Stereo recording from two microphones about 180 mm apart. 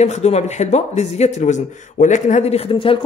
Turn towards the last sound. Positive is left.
turn(degrees=30)  # may be behind; listen again after turning